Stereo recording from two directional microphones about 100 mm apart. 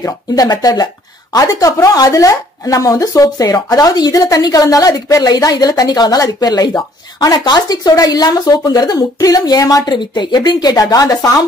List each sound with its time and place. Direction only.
0.0 s speech: 40° left (ahead or behind)
9.9 s speech: 50° left (ahead or behind)